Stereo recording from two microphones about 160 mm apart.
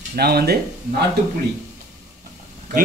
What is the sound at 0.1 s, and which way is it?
Speech, 75° right (ahead or behind).